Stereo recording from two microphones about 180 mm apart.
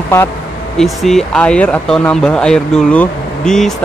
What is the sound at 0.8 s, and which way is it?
Speech, centre (ahead or behind).